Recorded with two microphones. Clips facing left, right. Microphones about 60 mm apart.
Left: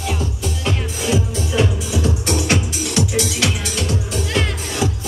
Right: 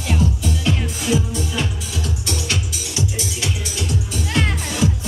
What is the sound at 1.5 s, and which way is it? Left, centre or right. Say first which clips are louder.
Music: left 6 dB; centre.